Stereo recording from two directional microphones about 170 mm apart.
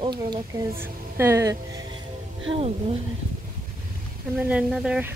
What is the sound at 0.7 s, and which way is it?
Speech, 15° right (ahead or behind).